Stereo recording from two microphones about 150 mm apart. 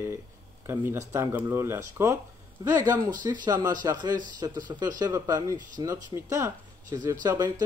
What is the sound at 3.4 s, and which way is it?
Speech, 25° right (ahead or behind).